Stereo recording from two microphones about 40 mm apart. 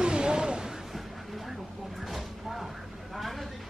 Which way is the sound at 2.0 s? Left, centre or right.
Centre.